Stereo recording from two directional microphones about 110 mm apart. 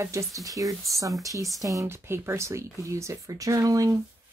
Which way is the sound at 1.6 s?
30° right (ahead or behind).